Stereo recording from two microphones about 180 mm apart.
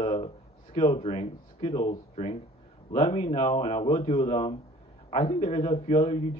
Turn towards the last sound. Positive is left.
turn(degrees=40)  # may be behind; listen again after turning